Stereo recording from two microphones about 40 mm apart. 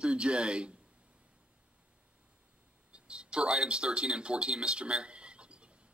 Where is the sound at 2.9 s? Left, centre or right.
Right.